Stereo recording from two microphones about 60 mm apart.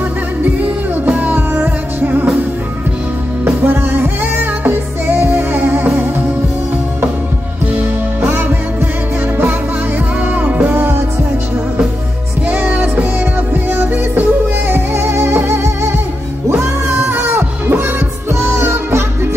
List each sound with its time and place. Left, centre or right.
0.4 s music: right
3.6 s music: right
7.7 s music: right
10.2 s music: right
12.4 s music: right
14.7 s music: right
17.1 s music: right